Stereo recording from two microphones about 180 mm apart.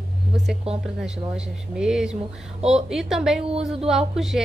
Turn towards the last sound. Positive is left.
turn(degrees=0)  # may be behind; listen again after turning